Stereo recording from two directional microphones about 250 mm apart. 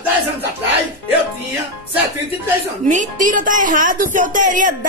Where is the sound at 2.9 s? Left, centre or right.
Right.